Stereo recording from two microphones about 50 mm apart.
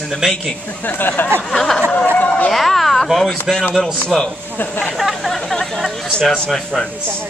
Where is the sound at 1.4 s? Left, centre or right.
Centre.